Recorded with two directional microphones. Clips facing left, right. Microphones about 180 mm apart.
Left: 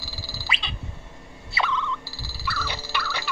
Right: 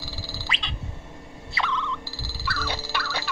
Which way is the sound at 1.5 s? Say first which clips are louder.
Left 2 dB; 5° left (ahead or behind).